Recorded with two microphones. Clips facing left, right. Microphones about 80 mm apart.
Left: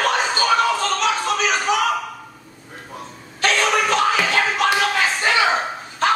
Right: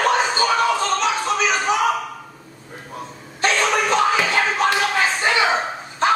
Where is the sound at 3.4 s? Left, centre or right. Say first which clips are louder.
Even; centre.